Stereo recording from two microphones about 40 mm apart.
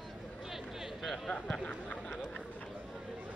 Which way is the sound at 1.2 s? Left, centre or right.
Centre.